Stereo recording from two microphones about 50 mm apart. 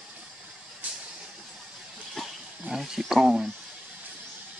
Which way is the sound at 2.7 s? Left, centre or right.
Centre.